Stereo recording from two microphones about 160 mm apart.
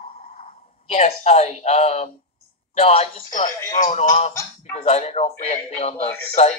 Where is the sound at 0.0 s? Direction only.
40° left (ahead or behind).